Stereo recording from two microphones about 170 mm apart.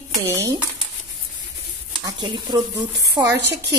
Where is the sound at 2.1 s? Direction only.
25° right (ahead or behind).